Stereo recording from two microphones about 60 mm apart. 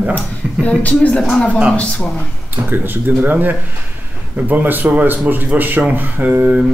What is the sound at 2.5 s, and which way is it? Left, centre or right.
Speech, right.